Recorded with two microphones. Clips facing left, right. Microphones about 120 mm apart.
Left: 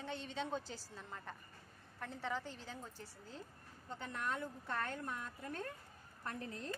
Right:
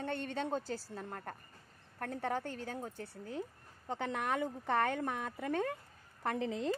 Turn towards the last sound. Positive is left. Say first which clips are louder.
# right 10 dB
turn(degrees=-90)